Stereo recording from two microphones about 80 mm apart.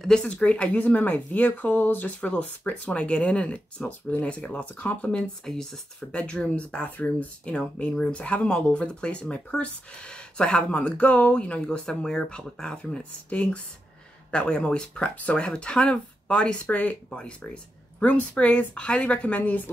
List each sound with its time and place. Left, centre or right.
0.2 s speech: centre